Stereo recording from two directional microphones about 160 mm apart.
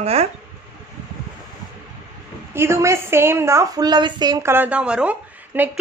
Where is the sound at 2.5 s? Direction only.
15° right (ahead or behind).